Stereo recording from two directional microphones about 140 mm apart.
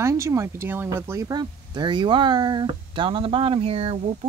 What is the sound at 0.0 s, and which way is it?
Speech, 20° right (ahead or behind).